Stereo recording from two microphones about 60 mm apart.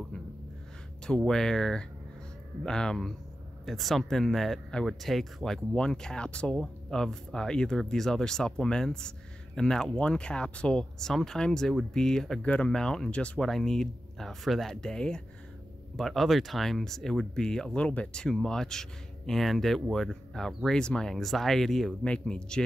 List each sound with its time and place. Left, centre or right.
1.0 s speech: centre
12.4 s speech: centre
13.5 s speech: centre
14.8 s speech: centre
16.0 s speech: centre
22.0 s speech: centre